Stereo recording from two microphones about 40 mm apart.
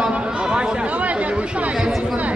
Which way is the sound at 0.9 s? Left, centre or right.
Right.